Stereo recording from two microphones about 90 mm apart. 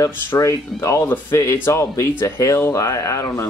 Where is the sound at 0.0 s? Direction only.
35° left (ahead or behind).